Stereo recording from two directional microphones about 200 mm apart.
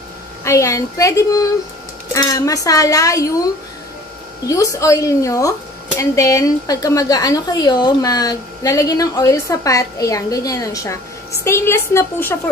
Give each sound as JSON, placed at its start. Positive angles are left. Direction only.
{"t": 0.4, "sound": "a woman's voice", "side_deg": 15}
{"t": 4.5, "sound": "a woman's voice", "side_deg": 15}